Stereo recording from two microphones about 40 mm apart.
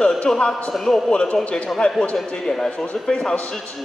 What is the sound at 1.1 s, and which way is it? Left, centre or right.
Speech, left.